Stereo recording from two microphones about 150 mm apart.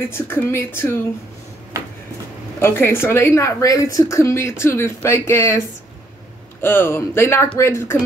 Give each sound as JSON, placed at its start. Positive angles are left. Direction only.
{"t": 0.1, "sound": "a woman's voice", "side_deg": 15}
{"t": 2.6, "sound": "a woman's voice", "side_deg": 15}
{"t": 6.6, "sound": "a woman's voice", "side_deg": 15}